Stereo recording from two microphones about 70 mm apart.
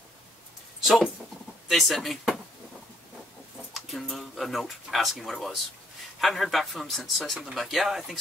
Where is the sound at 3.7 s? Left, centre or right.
Centre.